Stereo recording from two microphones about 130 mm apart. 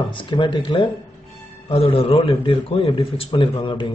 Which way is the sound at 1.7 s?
50° left (ahead or behind).